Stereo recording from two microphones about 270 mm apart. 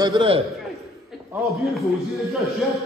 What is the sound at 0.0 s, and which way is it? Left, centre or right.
Speech, centre.